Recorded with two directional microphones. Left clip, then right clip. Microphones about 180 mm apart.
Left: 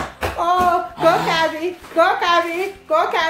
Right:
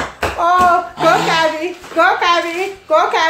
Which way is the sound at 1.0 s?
15° left (ahead or behind).